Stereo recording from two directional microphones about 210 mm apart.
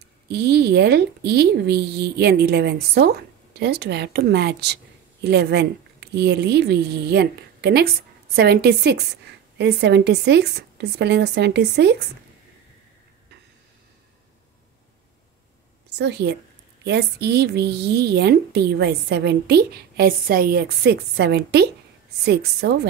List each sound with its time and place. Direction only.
0.3 s speech: 50° right (ahead or behind)
16.0 s speech: 55° right (ahead or behind)